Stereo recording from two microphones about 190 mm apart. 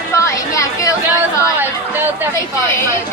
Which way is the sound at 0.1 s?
15° left (ahead or behind).